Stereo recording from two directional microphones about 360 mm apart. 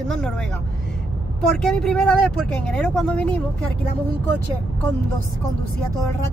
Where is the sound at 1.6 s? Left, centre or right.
Centre.